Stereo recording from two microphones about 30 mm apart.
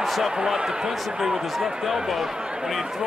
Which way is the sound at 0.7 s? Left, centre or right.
Centre.